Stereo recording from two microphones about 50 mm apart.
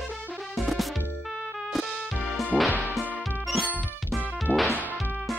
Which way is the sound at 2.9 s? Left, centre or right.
Centre.